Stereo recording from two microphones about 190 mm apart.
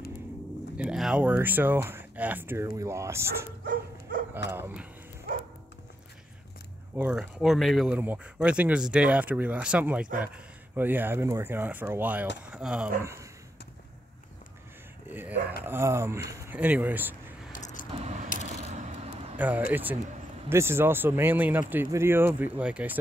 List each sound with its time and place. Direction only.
0.7 s speech: 5° right (ahead or behind)
4.5 s speech: 10° right (ahead or behind)
7.0 s speech: 5° right (ahead or behind)
15.0 s a sound: 10° right (ahead or behind)
15.6 s speech: 15° right (ahead or behind)
17.5 s vehicle: 40° left (ahead or behind)
17.9 s coin: 35° right (ahead or behind)
18.6 s a sound: 40° right (ahead or behind)
19.3 s speech: 10° right (ahead or behind)